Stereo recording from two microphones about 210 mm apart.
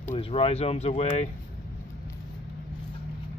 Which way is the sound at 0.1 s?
30° left (ahead or behind).